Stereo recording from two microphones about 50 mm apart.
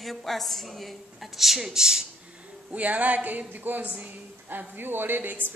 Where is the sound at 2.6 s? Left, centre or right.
Right.